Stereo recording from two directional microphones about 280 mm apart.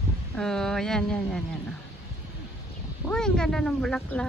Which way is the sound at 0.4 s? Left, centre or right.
Centre.